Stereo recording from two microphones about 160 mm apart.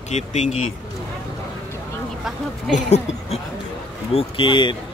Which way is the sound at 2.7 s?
45° left (ahead or behind).